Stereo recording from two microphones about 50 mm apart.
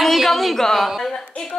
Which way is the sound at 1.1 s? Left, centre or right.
Left.